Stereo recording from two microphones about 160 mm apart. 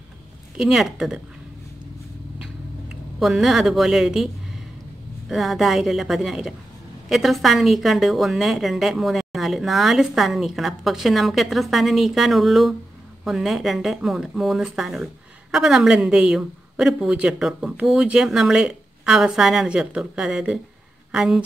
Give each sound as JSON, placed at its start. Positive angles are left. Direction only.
{"t": 0.6, "sound": "a woman's voice", "side_deg": 0}
{"t": 2.3, "sound": "a sound", "side_deg": -5}
{"t": 5.3, "sound": "a woman's voice", "side_deg": 0}